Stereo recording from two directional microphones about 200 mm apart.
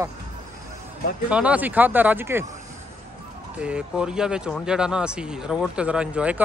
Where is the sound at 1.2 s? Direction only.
5° right (ahead or behind).